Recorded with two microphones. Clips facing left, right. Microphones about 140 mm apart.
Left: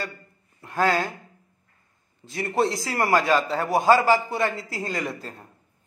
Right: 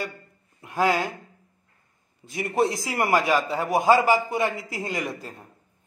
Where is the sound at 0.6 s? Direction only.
15° right (ahead or behind).